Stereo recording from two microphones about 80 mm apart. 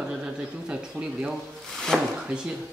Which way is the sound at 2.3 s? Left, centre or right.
Centre.